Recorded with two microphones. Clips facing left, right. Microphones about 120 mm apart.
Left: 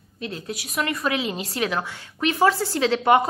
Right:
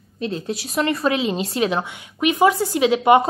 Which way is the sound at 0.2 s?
25° right (ahead or behind).